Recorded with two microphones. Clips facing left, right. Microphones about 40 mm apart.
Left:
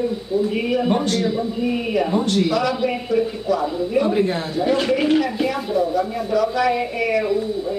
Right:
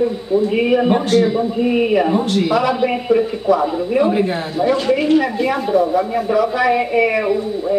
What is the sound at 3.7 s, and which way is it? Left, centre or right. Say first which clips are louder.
Speech: right 3 dB; right.